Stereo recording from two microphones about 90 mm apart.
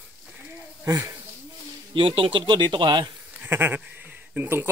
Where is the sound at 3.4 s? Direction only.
20° right (ahead or behind).